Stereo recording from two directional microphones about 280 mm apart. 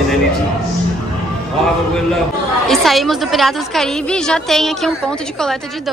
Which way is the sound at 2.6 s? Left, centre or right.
Centre.